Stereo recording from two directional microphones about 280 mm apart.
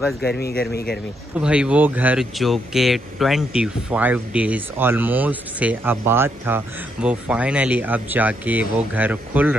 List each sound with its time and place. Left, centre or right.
0.2 s a man's voice: left
1.4 s speech: centre